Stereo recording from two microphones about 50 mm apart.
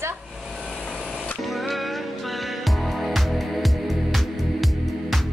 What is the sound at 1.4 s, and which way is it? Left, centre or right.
Music, centre.